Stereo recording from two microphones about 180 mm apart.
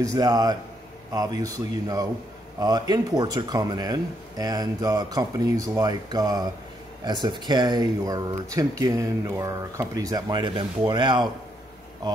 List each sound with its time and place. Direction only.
0.0 s speech: 20° right (ahead or behind)